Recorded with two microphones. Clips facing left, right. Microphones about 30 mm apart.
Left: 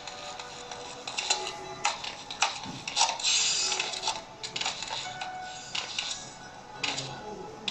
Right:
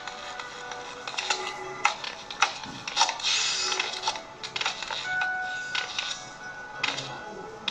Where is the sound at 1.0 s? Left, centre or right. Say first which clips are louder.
Right 1 dB; right.